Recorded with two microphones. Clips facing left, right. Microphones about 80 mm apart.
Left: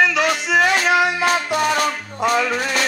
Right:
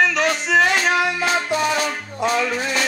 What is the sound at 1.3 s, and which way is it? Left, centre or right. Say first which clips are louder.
Music: left 2 dB; left.